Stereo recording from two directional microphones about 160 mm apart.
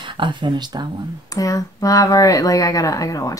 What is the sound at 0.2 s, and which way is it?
Speech, 30° right (ahead or behind).